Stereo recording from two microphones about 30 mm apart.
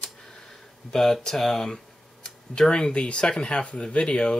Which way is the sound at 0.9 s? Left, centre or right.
Centre.